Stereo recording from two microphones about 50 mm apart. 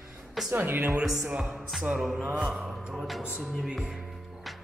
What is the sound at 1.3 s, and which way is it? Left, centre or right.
Speech, right.